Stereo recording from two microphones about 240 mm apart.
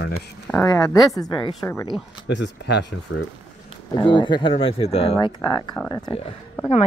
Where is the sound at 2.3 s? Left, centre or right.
Left.